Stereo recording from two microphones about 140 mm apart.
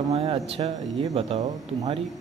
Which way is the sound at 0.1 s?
45° right (ahead or behind).